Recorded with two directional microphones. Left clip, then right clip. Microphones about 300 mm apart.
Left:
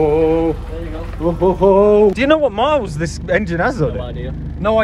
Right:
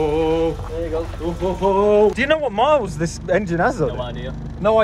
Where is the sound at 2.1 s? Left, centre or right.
Centre.